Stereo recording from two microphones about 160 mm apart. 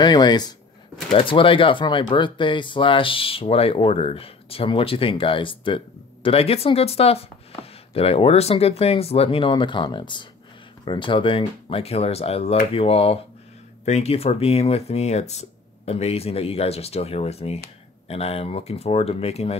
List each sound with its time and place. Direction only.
0.0 s speech: 25° left (ahead or behind)